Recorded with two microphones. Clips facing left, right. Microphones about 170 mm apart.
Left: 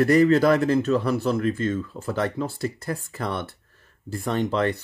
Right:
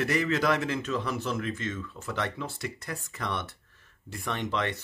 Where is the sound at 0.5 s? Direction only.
35° left (ahead or behind).